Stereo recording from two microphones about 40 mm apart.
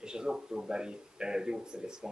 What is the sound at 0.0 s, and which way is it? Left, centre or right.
Speech, centre.